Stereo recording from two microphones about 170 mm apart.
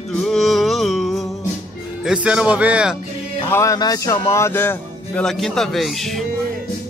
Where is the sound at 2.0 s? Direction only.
5° right (ahead or behind).